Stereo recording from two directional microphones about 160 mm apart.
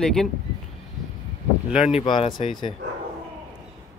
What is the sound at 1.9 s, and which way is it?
Speech, 35° left (ahead or behind).